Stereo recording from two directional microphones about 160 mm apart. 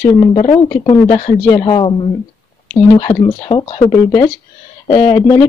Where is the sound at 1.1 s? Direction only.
45° left (ahead or behind).